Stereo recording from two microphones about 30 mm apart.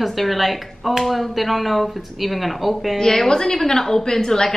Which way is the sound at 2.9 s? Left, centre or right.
Centre.